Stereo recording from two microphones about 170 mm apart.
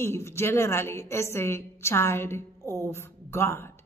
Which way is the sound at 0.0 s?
15° left (ahead or behind).